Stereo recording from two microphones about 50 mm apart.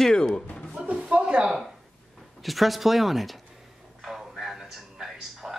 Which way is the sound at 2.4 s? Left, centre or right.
Centre.